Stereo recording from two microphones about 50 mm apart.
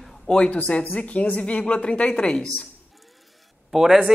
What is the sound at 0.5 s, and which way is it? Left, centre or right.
Speech, left.